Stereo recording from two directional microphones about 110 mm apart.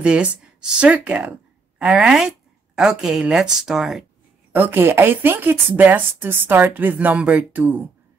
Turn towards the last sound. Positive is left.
turn(degrees=-15)  # may be behind; listen again after turning